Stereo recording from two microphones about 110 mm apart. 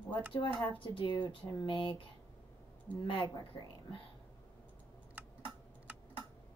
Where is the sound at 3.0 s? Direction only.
50° left (ahead or behind).